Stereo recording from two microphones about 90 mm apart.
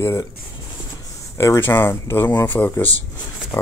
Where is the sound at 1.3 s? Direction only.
35° left (ahead or behind).